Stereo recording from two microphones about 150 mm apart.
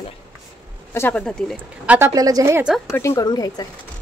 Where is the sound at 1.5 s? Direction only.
10° right (ahead or behind).